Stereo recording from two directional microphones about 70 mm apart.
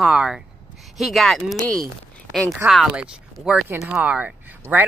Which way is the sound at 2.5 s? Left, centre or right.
Centre.